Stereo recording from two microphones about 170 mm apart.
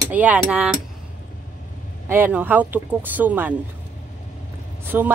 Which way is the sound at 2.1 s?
10° right (ahead or behind).